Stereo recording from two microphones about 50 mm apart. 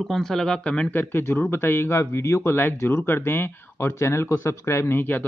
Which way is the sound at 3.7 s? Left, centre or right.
Left.